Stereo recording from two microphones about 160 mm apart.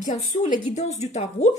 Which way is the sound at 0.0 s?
50° left (ahead or behind).